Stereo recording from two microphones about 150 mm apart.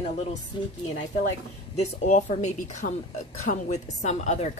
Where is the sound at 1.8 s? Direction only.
55° left (ahead or behind).